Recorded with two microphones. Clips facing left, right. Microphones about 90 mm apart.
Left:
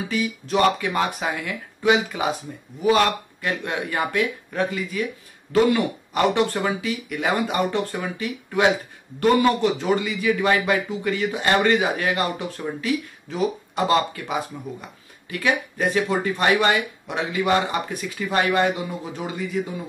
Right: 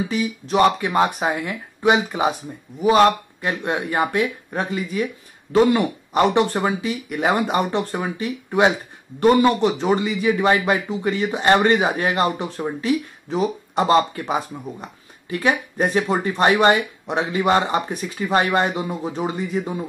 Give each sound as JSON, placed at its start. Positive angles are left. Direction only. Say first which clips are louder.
{"t": 0.1, "sound": "a man's voice", "louder": "right 2 dB", "side_deg": -25}